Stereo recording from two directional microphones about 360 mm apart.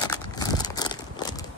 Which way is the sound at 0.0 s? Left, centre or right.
Centre.